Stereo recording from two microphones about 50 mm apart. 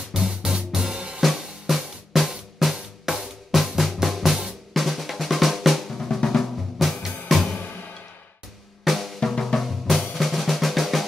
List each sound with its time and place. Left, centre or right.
0.1 s music: centre
0.9 s drum kit: centre
1.2 s drum: centre
5.9 s drum: centre
7.3 s music: centre
8.8 s drum: centre
9.2 s drum: centre
9.6 s drum: centre